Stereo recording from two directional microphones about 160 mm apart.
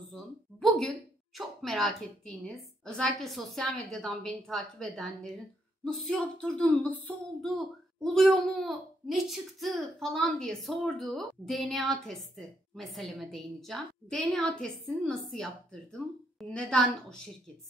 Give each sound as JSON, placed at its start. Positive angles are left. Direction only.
{"t": 0.1, "sound": "a woman's voice", "side_deg": 5}